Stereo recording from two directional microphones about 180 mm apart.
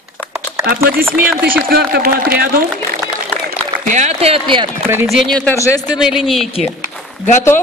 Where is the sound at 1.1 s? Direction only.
10° right (ahead or behind).